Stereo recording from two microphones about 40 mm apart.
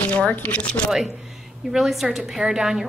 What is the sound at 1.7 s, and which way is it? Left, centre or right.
A woman's voice, centre.